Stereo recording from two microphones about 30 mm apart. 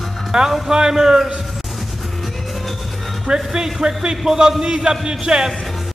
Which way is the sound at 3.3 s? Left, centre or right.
Right.